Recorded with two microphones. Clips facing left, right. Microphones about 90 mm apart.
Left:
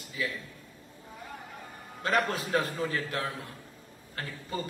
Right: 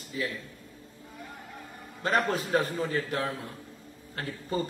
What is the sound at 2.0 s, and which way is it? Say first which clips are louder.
A man's voice: right 1 dB; 25° right (ahead or behind).